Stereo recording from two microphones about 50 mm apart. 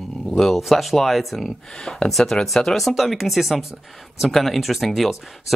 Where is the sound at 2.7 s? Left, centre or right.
Centre.